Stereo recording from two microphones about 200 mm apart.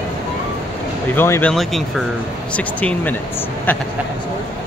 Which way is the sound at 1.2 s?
10° left (ahead or behind).